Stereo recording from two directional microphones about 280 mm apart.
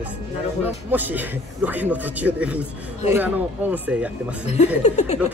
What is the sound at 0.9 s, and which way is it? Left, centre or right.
A man's voice, centre.